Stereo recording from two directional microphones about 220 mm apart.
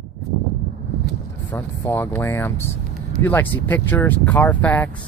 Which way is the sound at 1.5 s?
10° left (ahead or behind).